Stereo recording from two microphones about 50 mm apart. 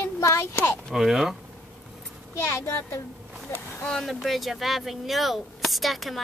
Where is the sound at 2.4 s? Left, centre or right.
Left.